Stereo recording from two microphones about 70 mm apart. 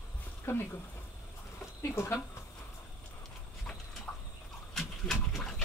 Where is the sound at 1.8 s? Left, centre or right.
Left.